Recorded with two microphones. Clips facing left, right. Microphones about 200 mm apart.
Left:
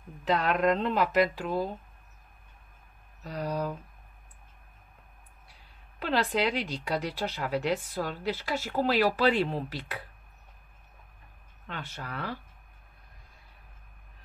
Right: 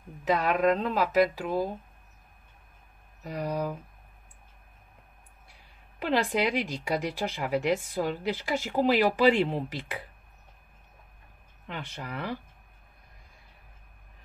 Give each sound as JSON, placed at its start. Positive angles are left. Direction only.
{"t": 0.2, "sound": "speech", "side_deg": -10}
{"t": 3.3, "sound": "speech", "side_deg": -10}
{"t": 5.9, "sound": "speech", "side_deg": -15}
{"t": 11.6, "sound": "speech", "side_deg": -15}